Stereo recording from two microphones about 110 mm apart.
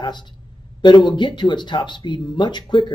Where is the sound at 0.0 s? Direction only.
40° left (ahead or behind).